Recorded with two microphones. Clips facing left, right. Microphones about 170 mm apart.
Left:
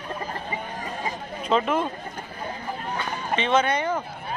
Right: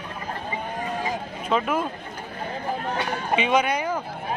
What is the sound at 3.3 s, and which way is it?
Speech, 10° right (ahead or behind).